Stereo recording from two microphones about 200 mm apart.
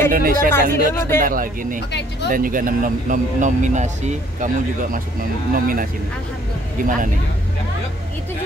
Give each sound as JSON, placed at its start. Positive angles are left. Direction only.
{"t": 0.1, "sound": "a man's voice", "side_deg": -45}
{"t": 0.5, "sound": "speech", "side_deg": 10}
{"t": 1.2, "sound": "a man's voice", "side_deg": -45}
{"t": 5.5, "sound": "a man's voice", "side_deg": -45}